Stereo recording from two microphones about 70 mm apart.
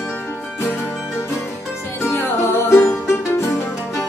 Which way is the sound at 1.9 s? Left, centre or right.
Left.